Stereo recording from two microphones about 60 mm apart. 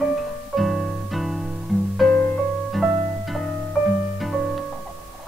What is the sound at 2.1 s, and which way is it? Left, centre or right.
Music, left.